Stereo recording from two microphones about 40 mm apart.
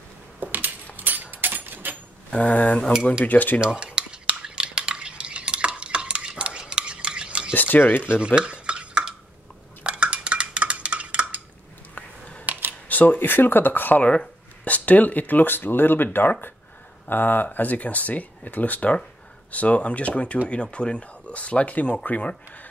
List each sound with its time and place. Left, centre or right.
0.4 s coin: right
0.9 s a sound: right
2.3 s speech: left
3.3 s speech: left
3.6 s dishes: right
7.5 s speech: left
8.4 s stir: right
9.8 s dishes: right
11.9 s finger snapping: left
12.4 s camera: right
12.8 s speech: left
14.6 s speech: left